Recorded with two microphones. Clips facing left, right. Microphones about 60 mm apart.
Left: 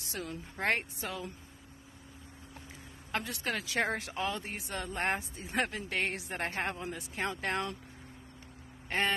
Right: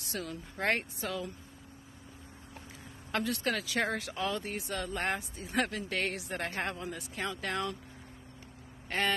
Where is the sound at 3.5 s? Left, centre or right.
Left.